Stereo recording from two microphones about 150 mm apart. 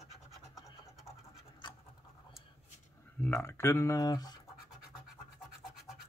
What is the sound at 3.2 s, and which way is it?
Speech, 15° left (ahead or behind).